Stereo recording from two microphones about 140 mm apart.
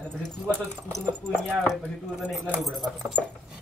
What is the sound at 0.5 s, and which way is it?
Speech, 10° left (ahead or behind).